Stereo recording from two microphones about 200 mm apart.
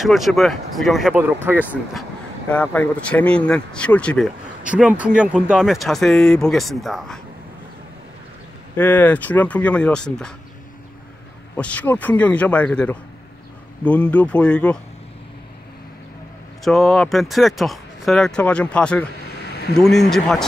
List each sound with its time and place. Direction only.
0.0 s speech: centre (ahead or behind)
2.5 s speech: 5° left (ahead or behind)
4.6 s speech: 5° right (ahead or behind)
8.7 s speech: 10° left (ahead or behind)
11.5 s speech: 5° left (ahead or behind)
16.6 s speech: centre (ahead or behind)
19.4 s a sound: 55° left (ahead or behind)
19.7 s speech: centre (ahead or behind)